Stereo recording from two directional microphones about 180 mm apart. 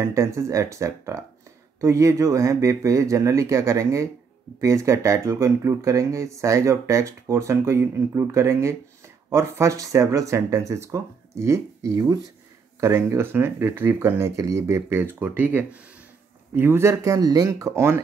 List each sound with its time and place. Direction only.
0.0 s speech: 15° right (ahead or behind)